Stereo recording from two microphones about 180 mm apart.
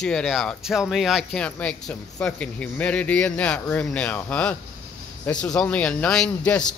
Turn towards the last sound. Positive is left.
turn(degrees=5)  # may be behind; listen again after turning